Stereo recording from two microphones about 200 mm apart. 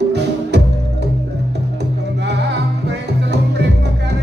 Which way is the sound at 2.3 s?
55° right (ahead or behind).